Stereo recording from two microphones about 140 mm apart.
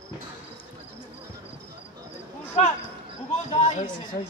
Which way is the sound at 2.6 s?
55° left (ahead or behind).